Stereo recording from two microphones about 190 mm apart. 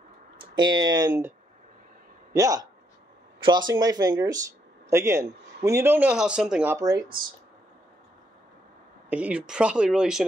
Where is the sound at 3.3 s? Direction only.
25° right (ahead or behind).